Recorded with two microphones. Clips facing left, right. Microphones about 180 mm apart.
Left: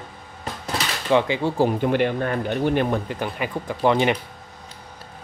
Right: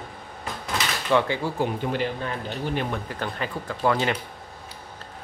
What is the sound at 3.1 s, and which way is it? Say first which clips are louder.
Speech: left 3 dB; 15° left (ahead or behind).